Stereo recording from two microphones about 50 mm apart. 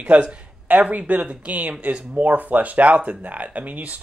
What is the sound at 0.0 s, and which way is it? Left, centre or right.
Speech, right.